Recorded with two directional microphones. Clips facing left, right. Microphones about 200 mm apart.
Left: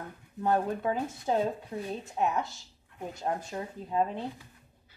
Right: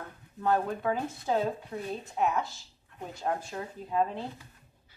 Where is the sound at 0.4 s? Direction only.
25° left (ahead or behind).